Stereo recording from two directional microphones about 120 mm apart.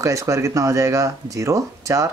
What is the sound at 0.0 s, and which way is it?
Speech, 25° right (ahead or behind).